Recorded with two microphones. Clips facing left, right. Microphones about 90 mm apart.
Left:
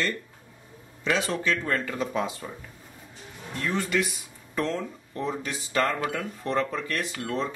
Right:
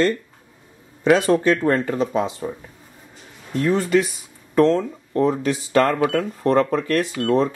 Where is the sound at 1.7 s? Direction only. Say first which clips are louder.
Right 7 dB; 30° right (ahead or behind).